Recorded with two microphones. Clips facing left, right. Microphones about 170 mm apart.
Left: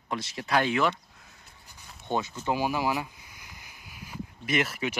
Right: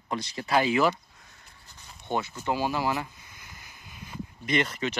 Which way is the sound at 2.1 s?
15° right (ahead or behind).